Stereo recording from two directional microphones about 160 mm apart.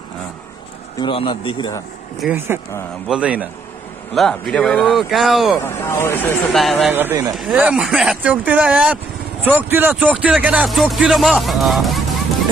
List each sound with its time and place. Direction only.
0.9 s a man's voice: 30° left (ahead or behind)
2.2 s speech: 15° right (ahead or behind)
5.6 s speech: 15° left (ahead or behind)
6.5 s speech: centre (ahead or behind)
6.9 s speech: 10° right (ahead or behind)
7.2 s speech: centre (ahead or behind)